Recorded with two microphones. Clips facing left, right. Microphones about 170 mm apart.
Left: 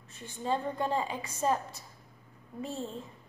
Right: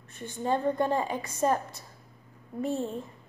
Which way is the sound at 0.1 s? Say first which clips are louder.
Right 4 dB; 55° right (ahead or behind).